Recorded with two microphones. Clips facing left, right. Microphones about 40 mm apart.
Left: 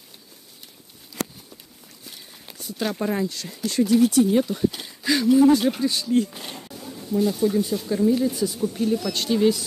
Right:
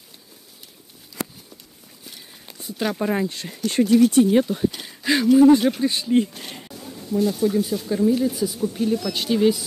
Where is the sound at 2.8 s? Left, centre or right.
Centre.